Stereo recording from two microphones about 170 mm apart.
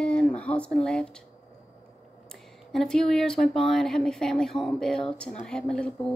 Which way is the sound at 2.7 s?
5° left (ahead or behind).